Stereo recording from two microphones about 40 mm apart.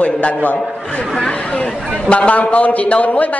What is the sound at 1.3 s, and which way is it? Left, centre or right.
A man's voice, left.